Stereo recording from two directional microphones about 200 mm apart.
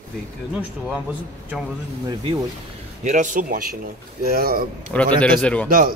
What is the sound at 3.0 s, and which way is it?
A man's voice, 40° right (ahead or behind).